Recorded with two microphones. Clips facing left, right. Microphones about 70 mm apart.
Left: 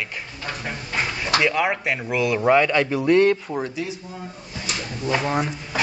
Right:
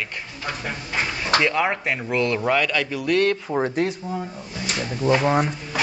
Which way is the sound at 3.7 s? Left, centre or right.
Right.